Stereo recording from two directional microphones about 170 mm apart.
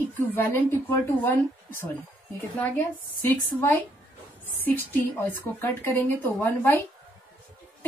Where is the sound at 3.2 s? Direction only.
10° left (ahead or behind).